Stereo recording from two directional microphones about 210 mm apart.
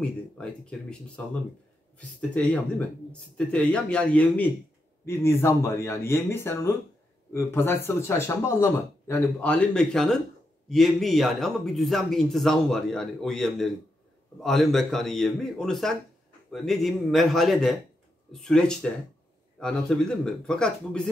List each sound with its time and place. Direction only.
0.0 s speech: 5° left (ahead or behind)